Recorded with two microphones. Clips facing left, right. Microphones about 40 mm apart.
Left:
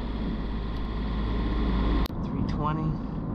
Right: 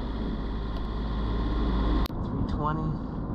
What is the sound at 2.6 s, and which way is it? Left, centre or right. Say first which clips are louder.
Vehicle: even; left.